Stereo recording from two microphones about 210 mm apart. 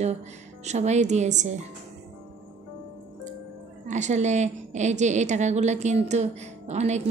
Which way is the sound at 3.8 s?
35° right (ahead or behind).